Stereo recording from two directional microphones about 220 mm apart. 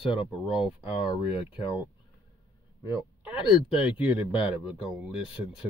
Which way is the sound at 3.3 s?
25° left (ahead or behind).